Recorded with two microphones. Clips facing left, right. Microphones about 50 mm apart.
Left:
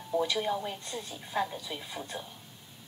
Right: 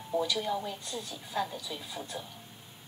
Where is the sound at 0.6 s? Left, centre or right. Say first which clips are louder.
Left 1 dB; left.